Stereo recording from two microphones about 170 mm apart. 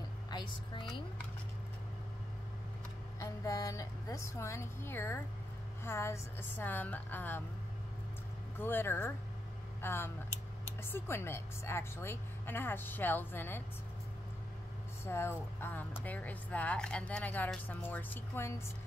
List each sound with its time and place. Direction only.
0.3 s a woman's voice: 25° left (ahead or behind)
3.2 s a woman's voice: 20° left (ahead or behind)
8.5 s a woman's voice: 10° left (ahead or behind)
15.0 s a woman's voice: 15° left (ahead or behind)